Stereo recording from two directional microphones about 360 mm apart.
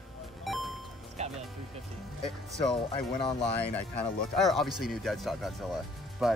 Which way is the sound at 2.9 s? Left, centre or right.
Centre.